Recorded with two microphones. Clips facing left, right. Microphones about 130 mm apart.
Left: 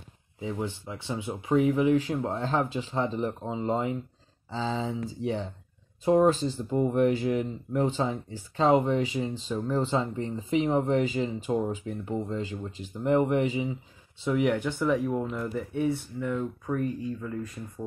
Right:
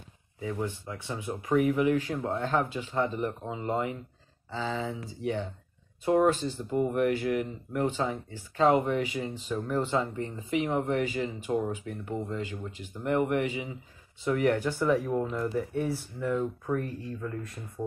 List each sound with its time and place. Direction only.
0.4 s speech: 20° left (ahead or behind)
14.3 s speech: 5° left (ahead or behind)